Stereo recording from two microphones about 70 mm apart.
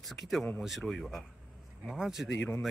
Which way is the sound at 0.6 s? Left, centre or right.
Centre.